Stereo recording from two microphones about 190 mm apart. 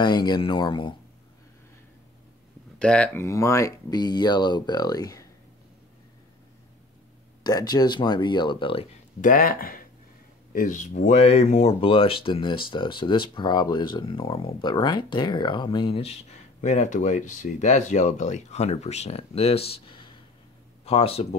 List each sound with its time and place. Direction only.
0.0 s speech: 20° left (ahead or behind)
2.8 s speech: 5° left (ahead or behind)
7.4 s speech: 20° left (ahead or behind)
9.2 s speech: 45° left (ahead or behind)